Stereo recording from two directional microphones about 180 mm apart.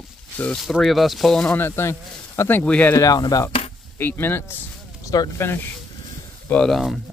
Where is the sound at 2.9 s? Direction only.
20° left (ahead or behind).